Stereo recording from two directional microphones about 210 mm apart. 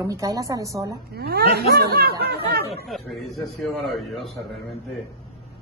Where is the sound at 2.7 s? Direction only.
Centre (ahead or behind).